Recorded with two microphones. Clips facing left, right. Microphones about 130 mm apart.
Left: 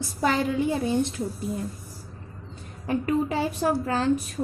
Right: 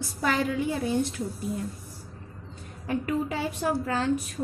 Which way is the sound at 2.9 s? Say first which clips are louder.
Left 3 dB; 35° left (ahead or behind).